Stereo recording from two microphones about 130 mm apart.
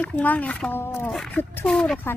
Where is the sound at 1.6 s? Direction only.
5° left (ahead or behind).